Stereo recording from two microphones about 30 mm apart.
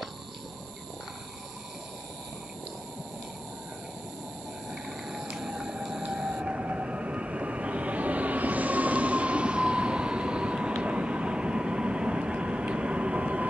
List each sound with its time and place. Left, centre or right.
4.8 s a sound: centre
5.3 s whale vocalization: centre
6.0 s vehicle: right
6.4 s train: right